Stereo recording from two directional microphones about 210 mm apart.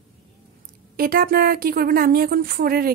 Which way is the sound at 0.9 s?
45° right (ahead or behind).